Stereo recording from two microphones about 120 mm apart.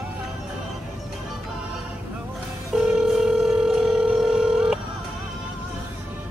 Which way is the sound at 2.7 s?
5° right (ahead or behind).